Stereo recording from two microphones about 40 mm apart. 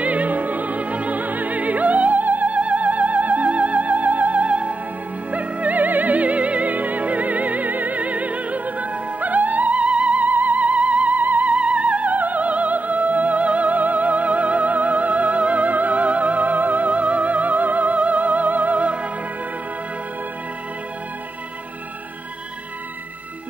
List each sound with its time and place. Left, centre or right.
0.0 s opera: right
5.3 s music: right
11.5 s music: right